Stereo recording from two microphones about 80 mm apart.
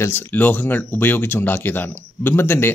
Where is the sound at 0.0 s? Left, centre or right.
Left.